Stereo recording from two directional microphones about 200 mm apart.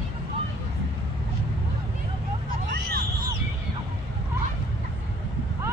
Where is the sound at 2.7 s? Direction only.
50° right (ahead or behind).